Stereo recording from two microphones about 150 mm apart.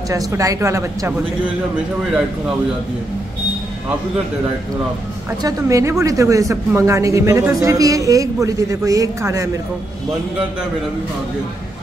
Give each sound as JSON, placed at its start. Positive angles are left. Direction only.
{"t": 0.1, "sound": "speech", "side_deg": -20}
{"t": 5.4, "sound": "speech", "side_deg": -20}